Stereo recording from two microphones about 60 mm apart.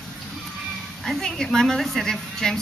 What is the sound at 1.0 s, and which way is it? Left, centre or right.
A woman's voice, centre.